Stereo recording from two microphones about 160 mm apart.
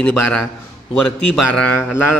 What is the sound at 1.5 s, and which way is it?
Speech, 5° left (ahead or behind).